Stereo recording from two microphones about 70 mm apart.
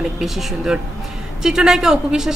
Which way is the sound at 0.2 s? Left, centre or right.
Centre.